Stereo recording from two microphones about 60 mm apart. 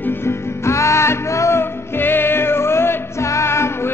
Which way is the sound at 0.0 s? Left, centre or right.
Left.